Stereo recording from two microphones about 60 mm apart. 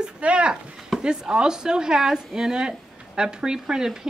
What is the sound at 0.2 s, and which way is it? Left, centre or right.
Chop, centre.